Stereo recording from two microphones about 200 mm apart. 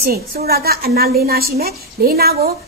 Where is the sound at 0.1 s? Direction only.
50° right (ahead or behind).